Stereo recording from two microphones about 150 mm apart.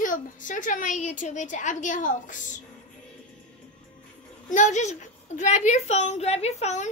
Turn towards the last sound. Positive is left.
turn(degrees=50)  # may be behind; listen again after turning